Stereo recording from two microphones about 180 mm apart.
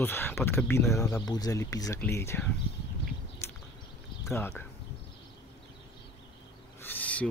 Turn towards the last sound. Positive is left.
turn(degrees=10)  # may be behind; listen again after turning